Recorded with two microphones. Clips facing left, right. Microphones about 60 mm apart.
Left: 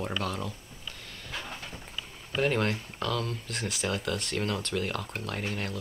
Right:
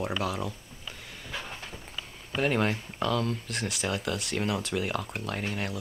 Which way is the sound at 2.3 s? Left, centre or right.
Centre.